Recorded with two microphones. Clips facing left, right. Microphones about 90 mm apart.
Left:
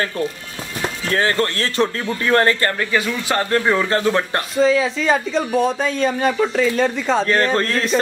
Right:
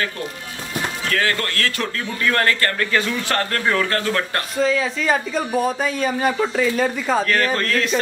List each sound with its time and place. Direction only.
1.0 s a man's voice: 30° left (ahead or behind)
4.6 s speech: centre (ahead or behind)
7.2 s a man's voice: 25° left (ahead or behind)